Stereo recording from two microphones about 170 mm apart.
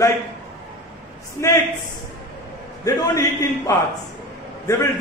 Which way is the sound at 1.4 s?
15° left (ahead or behind).